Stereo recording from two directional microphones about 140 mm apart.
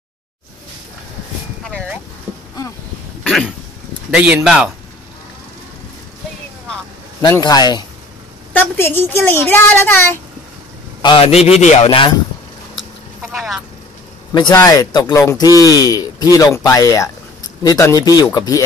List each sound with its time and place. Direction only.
1.6 s a sound: 10° left (ahead or behind)
3.3 s a sound: centre (ahead or behind)
4.1 s speech: 5° right (ahead or behind)
7.2 s speech: 30° left (ahead or behind)
8.5 s a woman's voice: 15° left (ahead or behind)
11.0 s a man's voice: 40° left (ahead or behind)
13.2 s vehicle: centre (ahead or behind)
14.3 s speech: 30° left (ahead or behind)